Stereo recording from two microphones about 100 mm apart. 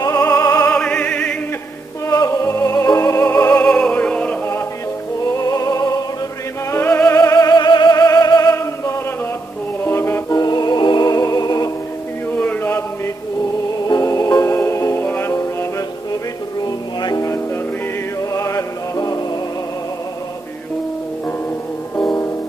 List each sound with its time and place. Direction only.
0.0 s opera: 30° left (ahead or behind)
0.7 s opera: 10° left (ahead or behind)
2.0 s music: 35° left (ahead or behind)
3.5 s music: 10° left (ahead or behind)
5.3 s music: 35° left (ahead or behind)
6.7 s music: 20° left (ahead or behind)
7.2 s music: 35° left (ahead or behind)
9.8 s music: 25° left (ahead or behind)
10.3 s music: 40° left (ahead or behind)
12.3 s a sound: 20° left (ahead or behind)
13.8 s music: 35° left (ahead or behind)
16.6 s music: 40° left (ahead or behind)
18.3 s music: 35° left (ahead or behind)
21.9 s music: 10° left (ahead or behind)